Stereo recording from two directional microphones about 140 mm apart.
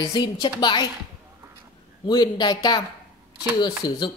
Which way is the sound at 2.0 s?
30° left (ahead or behind).